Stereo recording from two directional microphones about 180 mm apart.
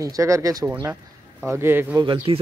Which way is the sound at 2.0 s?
25° right (ahead or behind).